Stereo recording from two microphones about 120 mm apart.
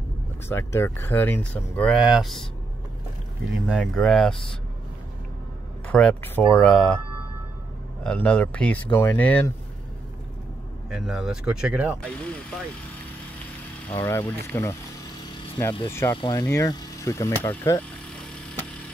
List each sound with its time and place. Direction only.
0.5 s speech: 20° left (ahead or behind)
2.0 s speech: 5° right (ahead or behind)
3.6 s speech: 5° right (ahead or behind)
5.9 s speech: 5° left (ahead or behind)
6.2 s speech: 15° left (ahead or behind)
6.6 s speech: 5° left (ahead or behind)
8.0 s speech: 10° left (ahead or behind)
10.9 s speech: 5° right (ahead or behind)
13.8 s speech: 20° left (ahead or behind)
16.1 s speech: 35° left (ahead or behind)
16.4 s speech: 25° left (ahead or behind)